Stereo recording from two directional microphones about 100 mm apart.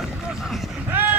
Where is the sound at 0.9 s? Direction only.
20° right (ahead or behind).